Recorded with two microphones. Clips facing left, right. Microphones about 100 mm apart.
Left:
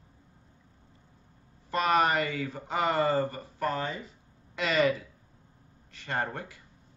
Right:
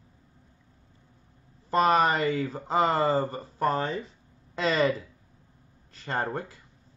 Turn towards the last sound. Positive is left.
turn(degrees=-30)  # may be behind; listen again after turning